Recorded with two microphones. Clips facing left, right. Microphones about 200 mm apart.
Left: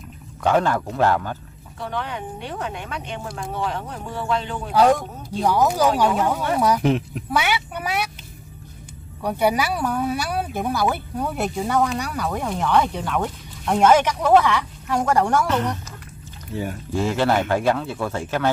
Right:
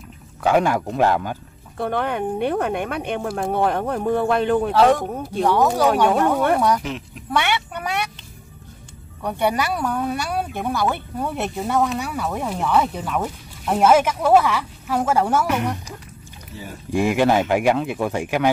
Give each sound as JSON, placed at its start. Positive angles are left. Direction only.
{"t": 0.4, "sound": "speech", "side_deg": -10}
{"t": 1.8, "sound": "speech", "side_deg": -55}
{"t": 5.4, "sound": "speech", "side_deg": 0}
{"t": 6.1, "sound": "speech", "side_deg": -55}
{"t": 6.8, "sound": "speech", "side_deg": 55}
{"t": 7.2, "sound": "speech", "side_deg": 5}
{"t": 9.2, "sound": "speech", "side_deg": 5}
{"t": 16.5, "sound": "speech", "side_deg": 55}
{"t": 16.9, "sound": "speech", "side_deg": -15}